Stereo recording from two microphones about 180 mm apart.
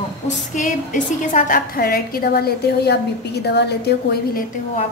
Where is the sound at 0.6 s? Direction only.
45° left (ahead or behind).